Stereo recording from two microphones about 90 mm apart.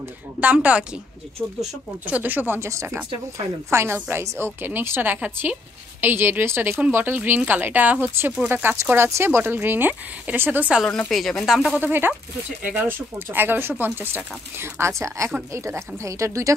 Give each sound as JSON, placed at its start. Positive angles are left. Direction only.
{"t": 0.4, "sound": "speech", "side_deg": -15}
{"t": 2.0, "sound": "speech", "side_deg": -20}
{"t": 2.7, "sound": "speech", "side_deg": -35}
{"t": 10.9, "sound": "a woman's voice", "side_deg": 5}
{"t": 11.8, "sound": "speech", "side_deg": -25}